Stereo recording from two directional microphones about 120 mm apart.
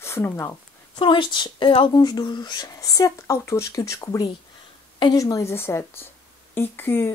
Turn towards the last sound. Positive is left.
turn(degrees=20)  # may be behind; listen again after turning